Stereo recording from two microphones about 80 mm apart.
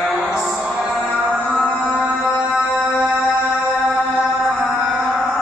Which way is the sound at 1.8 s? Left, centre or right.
Centre.